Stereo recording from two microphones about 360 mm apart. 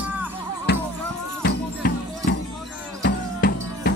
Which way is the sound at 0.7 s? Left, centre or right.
Left.